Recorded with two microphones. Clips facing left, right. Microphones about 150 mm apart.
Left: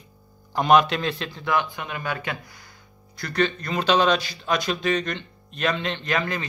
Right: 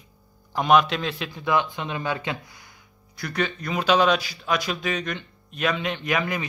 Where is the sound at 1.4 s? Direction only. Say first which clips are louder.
Right 1 dB; 20° right (ahead or behind).